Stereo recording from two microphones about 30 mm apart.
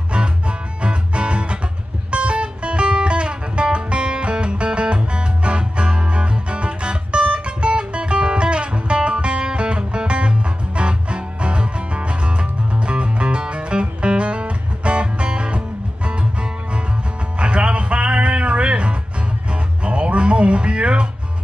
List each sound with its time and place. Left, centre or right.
0.1 s music: right
17.4 s music: right